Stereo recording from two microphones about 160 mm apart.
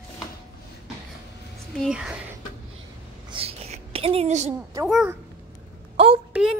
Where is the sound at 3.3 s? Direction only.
40° right (ahead or behind).